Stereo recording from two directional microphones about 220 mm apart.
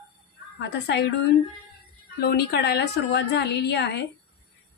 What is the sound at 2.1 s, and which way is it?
A woman's voice, 45° left (ahead or behind).